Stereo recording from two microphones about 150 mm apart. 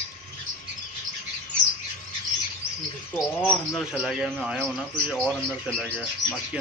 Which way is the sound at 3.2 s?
5° right (ahead or behind).